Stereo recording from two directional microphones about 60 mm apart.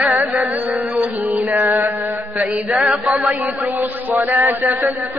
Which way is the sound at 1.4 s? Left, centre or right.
Right.